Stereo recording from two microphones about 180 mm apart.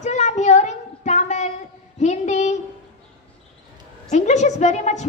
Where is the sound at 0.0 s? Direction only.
40° left (ahead or behind).